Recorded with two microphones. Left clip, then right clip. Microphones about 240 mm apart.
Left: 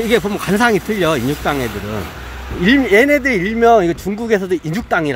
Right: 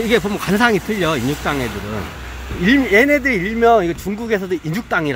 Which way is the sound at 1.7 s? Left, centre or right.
Left.